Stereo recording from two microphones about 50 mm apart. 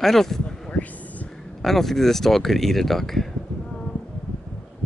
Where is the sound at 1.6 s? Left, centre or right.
Centre.